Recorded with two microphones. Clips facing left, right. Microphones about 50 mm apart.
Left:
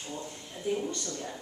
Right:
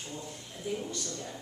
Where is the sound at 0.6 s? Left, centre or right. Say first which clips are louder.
Left 4 dB; centre.